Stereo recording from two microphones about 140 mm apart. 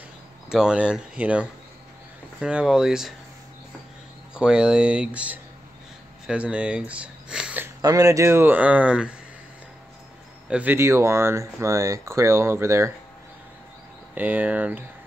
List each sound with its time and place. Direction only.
0.5 s speech: 5° right (ahead or behind)
4.3 s speech: 5° right (ahead or behind)
7.8 s speech: 25° right (ahead or behind); by 9.1 s 10° right (ahead or behind)
10.5 s speech: 10° right (ahead or behind)
14.1 s speech: 10° right (ahead or behind)